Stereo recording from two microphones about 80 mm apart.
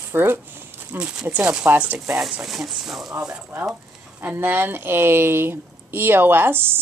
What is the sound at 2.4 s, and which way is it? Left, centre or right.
Speech, centre.